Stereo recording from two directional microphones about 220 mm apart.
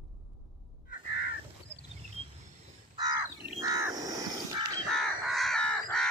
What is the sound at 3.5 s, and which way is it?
Crow, 15° right (ahead or behind).